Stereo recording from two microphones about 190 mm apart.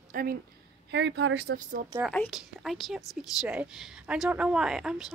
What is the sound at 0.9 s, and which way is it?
Speech, 70° right (ahead or behind).